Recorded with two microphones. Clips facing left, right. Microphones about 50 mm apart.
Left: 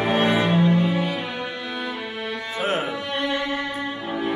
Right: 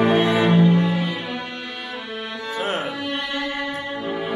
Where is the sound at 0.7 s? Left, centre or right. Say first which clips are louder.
Right 1 dB; centre.